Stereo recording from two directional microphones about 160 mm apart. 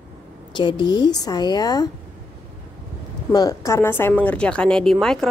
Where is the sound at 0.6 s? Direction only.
30° left (ahead or behind).